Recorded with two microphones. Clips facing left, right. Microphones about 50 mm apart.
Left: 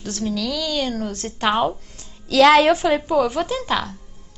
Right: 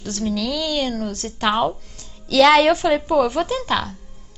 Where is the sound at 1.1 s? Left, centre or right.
Left.